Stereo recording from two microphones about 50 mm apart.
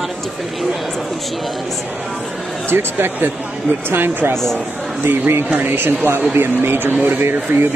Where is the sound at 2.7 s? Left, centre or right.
Right.